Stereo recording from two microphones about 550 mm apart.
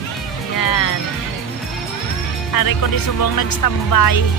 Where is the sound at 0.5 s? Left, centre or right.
Left.